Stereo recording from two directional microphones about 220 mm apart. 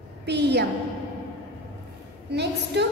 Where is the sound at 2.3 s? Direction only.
50° right (ahead or behind).